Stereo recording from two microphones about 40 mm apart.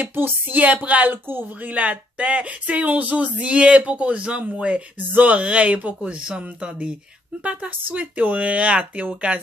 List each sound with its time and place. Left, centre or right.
0.1 s speech: right
1.1 s speech: right
1.7 s speech: right
5.1 s speech: right
6.0 s speech: right